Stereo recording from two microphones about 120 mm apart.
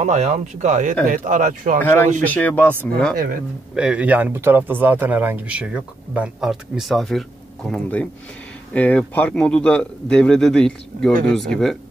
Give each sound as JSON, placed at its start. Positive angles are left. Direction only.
{"t": 0.0, "sound": "speech", "side_deg": -75}
{"t": 1.8, "sound": "a man's voice", "side_deg": 15}
{"t": 3.7, "sound": "a man's voice", "side_deg": -10}